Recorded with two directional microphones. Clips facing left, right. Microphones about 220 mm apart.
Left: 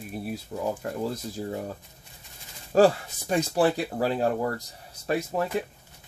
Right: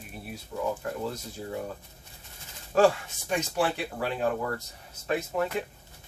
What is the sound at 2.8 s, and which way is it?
Speech, 35° left (ahead or behind).